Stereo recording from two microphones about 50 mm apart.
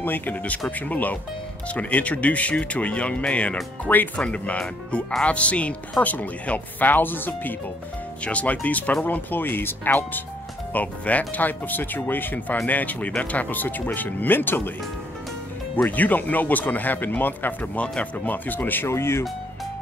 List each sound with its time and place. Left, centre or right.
0.0 s speech: left
3.8 s speech: left
4.2 s speech: centre; by 7.5 s left
8.2 s speech: left
10.7 s speech: left
15.9 s speech: left
18.9 s speech: left